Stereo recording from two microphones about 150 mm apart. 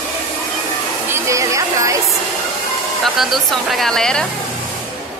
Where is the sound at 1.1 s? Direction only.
20° right (ahead or behind).